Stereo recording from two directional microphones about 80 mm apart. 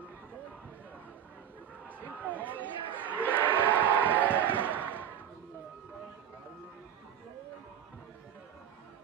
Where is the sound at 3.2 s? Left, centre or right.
Right.